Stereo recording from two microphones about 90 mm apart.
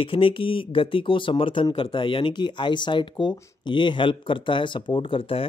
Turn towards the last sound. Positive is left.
turn(degrees=85)